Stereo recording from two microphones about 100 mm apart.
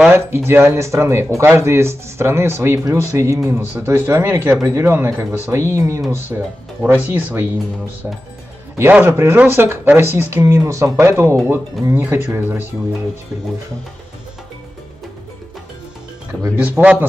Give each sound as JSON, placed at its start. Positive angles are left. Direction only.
{"t": 0.1, "sound": "speech", "side_deg": -25}
{"t": 9.0, "sound": "speech", "side_deg": -25}
{"t": 16.5, "sound": "a man's voice", "side_deg": -15}